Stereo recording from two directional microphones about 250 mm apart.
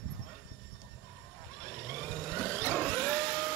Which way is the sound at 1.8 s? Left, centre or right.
Centre.